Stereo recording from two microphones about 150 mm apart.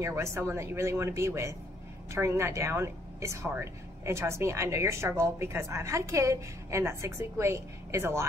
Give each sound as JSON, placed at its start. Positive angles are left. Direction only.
{"t": 0.0, "sound": "speech", "side_deg": -20}